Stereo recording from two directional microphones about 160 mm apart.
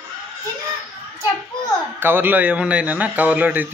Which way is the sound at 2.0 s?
15° right (ahead or behind).